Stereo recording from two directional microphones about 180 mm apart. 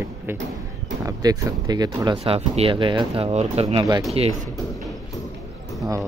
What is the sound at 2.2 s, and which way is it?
Speech, 35° right (ahead or behind).